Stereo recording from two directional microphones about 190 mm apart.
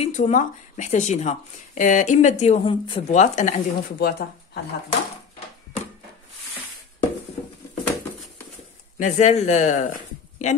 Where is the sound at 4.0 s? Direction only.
55° left (ahead or behind).